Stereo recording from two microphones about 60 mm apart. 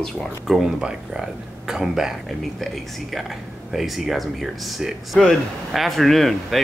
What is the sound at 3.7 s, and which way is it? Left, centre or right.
Speech, centre.